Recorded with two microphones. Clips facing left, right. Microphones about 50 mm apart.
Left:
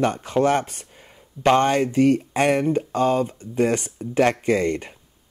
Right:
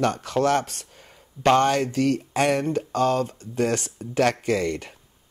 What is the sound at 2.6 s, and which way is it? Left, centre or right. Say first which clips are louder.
Speech: left 2 dB; centre.